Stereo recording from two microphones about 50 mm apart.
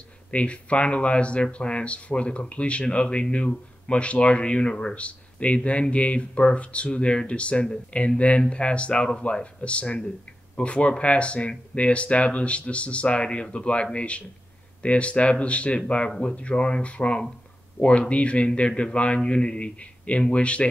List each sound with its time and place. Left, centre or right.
0.3 s speech: left